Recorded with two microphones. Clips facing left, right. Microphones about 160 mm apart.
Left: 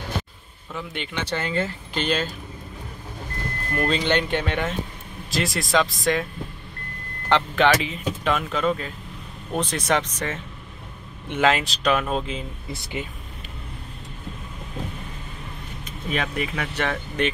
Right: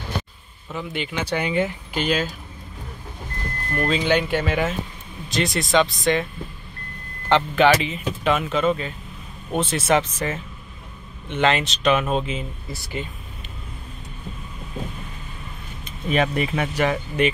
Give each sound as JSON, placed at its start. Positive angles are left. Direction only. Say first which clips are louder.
{"t": 0.7, "sound": "speech", "louder": "right 3 dB", "side_deg": -5}
{"t": 3.7, "sound": "speech", "louder": "right 2 dB", "side_deg": 0}
{"t": 7.2, "sound": "speech", "louder": "right 2 dB", "side_deg": 0}
{"t": 11.2, "sound": "speech", "louder": "even", "side_deg": 5}
{"t": 12.7, "sound": "speech", "louder": "right 1 dB", "side_deg": 20}
{"t": 16.1, "sound": "speech", "louder": "right 5 dB", "side_deg": -25}
{"t": 16.7, "sound": "speech", "louder": "right 4 dB", "side_deg": -10}